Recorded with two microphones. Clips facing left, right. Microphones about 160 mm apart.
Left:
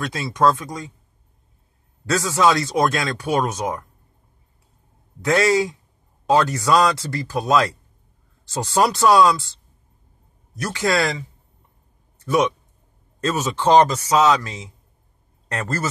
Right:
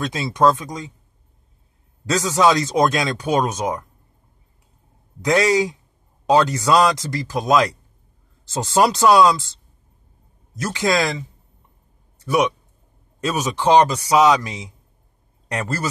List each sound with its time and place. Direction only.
0.0 s speech: 20° right (ahead or behind)
2.0 s speech: 20° right (ahead or behind)
5.2 s a man's voice: 15° right (ahead or behind)
10.5 s speech: 20° right (ahead or behind)
12.2 s a man's voice: 10° right (ahead or behind)